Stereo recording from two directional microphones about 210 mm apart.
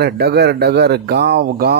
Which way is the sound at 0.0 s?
50° right (ahead or behind).